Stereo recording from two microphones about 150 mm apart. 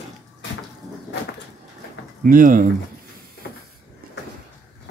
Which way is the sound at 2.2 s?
65° right (ahead or behind).